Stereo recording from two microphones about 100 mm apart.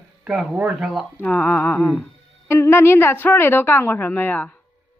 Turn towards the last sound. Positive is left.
turn(degrees=20)  # may be behind; listen again after turning